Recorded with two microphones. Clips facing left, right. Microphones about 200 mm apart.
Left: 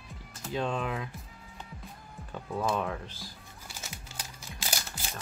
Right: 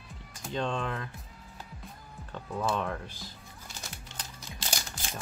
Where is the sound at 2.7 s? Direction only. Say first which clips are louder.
Even; centre (ahead or behind).